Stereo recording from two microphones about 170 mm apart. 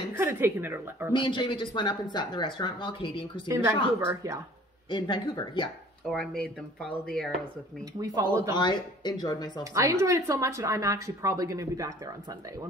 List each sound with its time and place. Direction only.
0.2 s speech: 15° right (ahead or behind)
1.1 s speech: 30° left (ahead or behind)
3.4 s speech: 15° right (ahead or behind)
4.8 s speech: 25° left (ahead or behind)
6.4 s speech: 5° left (ahead or behind)
8.0 s speech: 20° right (ahead or behind)
8.5 s speech: 25° left (ahead or behind)
9.6 s speech: 20° right (ahead or behind)